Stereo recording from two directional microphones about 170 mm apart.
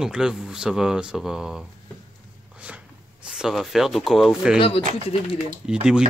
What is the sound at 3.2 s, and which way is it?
Speech, 5° right (ahead or behind).